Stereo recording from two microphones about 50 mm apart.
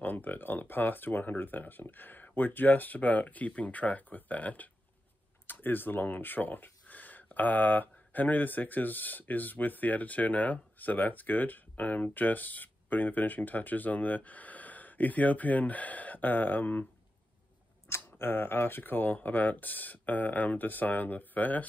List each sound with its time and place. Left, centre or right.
0.0 s speech: left
5.5 s speech: left
17.8 s speech: left